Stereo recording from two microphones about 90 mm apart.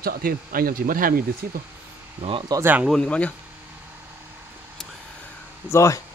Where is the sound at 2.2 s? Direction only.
90° right.